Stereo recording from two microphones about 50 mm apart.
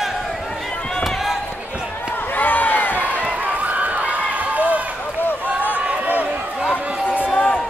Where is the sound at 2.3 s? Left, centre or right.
Left.